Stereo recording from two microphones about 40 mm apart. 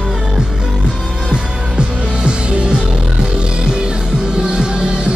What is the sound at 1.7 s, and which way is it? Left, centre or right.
Music, right.